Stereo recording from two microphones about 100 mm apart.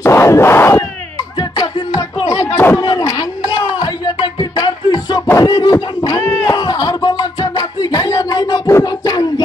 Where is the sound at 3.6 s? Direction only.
40° left (ahead or behind).